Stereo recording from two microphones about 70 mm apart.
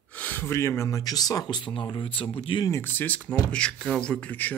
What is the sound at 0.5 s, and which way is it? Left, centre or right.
Speech, left.